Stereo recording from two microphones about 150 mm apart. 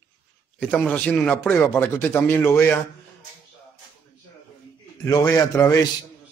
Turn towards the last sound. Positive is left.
turn(degrees=20)  # may be behind; listen again after turning